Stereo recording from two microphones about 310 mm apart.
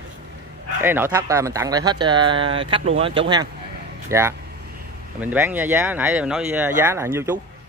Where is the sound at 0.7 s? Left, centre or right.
Centre.